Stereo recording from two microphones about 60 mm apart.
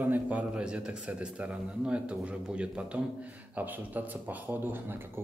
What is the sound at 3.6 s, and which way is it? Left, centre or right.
Speech, right.